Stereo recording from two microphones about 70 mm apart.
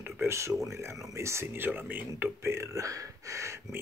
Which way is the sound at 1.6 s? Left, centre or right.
Right.